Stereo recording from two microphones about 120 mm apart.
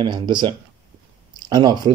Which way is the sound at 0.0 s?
35° right (ahead or behind).